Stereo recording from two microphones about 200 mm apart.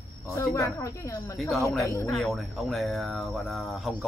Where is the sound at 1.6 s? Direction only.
15° left (ahead or behind).